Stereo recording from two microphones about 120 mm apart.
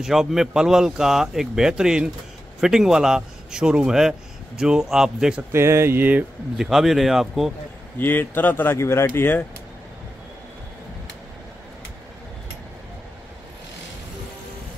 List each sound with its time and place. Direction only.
0.0 s speech: 5° right (ahead or behind)
5.5 s speech: 20° right (ahead or behind)
6.6 s speech: centre (ahead or behind)
8.0 s speech: 15° left (ahead or behind)